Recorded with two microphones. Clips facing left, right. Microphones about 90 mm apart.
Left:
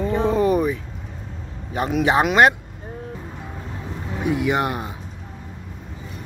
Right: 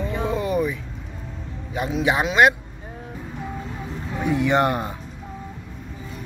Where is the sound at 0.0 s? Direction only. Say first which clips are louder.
Left 6 dB; 40° left (ahead or behind).